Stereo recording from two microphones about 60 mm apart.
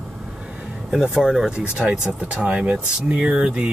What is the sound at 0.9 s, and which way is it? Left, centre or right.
Speech, centre.